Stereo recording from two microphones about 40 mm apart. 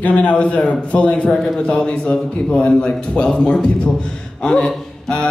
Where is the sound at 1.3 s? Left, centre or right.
Centre.